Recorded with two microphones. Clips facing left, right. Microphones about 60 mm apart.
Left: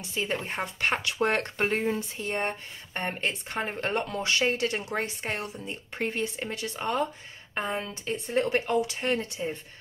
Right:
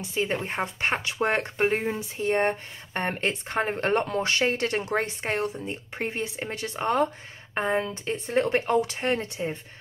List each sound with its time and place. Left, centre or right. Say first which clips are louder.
0.1 s speech: right 3 dB; right
2.1 s speech: right 6 dB; right